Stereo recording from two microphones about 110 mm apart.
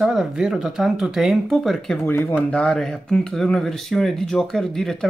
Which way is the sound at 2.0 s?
20° left (ahead or behind).